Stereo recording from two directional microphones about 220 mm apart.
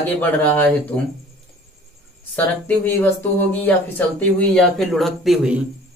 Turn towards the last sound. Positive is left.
turn(degrees=0)  # may be behind; listen again after turning